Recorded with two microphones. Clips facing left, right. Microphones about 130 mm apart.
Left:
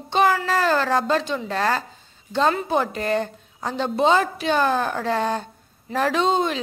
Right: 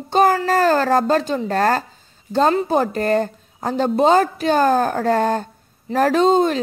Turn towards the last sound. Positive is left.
turn(degrees=-45)  # may be behind; listen again after turning